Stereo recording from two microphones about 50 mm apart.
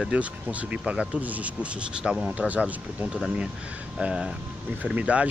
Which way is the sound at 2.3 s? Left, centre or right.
Right.